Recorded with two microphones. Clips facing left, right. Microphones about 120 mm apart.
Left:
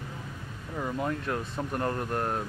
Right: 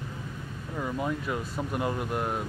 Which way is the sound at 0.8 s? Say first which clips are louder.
Even; centre (ahead or behind).